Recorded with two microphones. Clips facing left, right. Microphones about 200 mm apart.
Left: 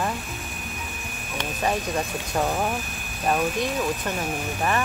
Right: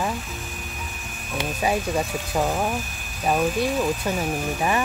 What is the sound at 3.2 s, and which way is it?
Speech, 10° right (ahead or behind).